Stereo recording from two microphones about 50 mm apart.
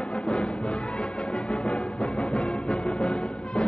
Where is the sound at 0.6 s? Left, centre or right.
Left.